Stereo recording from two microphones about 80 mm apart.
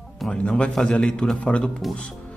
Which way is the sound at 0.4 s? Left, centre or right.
Centre.